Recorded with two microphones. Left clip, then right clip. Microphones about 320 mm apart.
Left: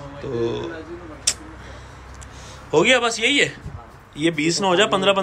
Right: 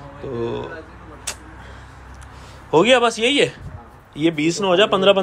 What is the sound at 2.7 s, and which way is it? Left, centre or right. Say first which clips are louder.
A man's voice: right 2 dB; centre.